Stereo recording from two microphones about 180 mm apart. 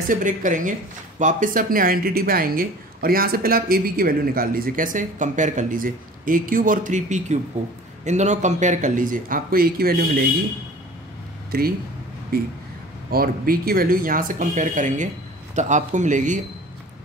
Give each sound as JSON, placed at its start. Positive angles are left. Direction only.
{"t": 0.1, "sound": "speech", "side_deg": -45}
{"t": 11.5, "sound": "speech", "side_deg": -60}